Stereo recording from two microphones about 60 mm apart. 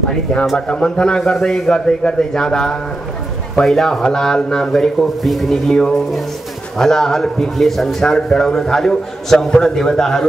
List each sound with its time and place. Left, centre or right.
0.1 s a man's voice: centre
5.7 s a man's voice: centre